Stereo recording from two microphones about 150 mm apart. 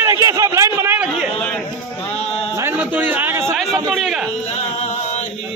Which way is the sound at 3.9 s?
Centre (ahead or behind).